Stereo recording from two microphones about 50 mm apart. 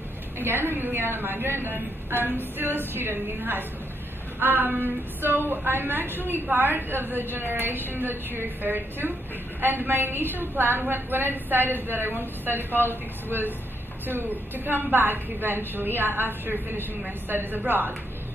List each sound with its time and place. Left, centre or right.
0.4 s a woman's voice: right
13.3 s a woman's voice: right